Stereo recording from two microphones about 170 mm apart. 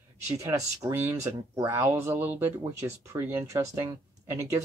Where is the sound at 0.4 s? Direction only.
20° right (ahead or behind).